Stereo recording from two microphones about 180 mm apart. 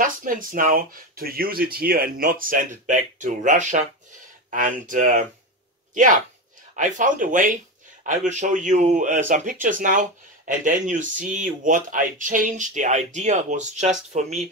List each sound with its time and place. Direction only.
0.0 s speech: 50° right (ahead or behind)
6.7 s speech: 45° right (ahead or behind)